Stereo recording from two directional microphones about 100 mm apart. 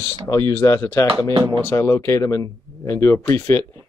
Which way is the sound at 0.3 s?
35° left (ahead or behind).